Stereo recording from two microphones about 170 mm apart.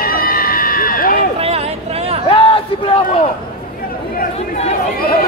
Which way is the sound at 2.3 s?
30° left (ahead or behind).